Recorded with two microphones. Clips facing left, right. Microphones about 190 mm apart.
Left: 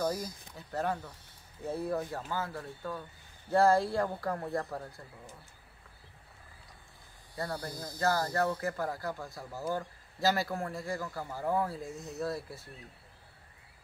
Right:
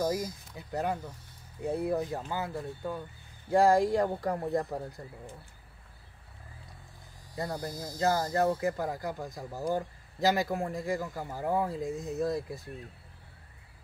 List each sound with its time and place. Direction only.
0.0 s speech: 15° right (ahead or behind)
7.3 s speech: 20° right (ahead or behind)